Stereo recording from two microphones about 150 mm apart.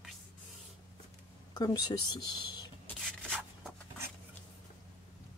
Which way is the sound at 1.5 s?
25° left (ahead or behind).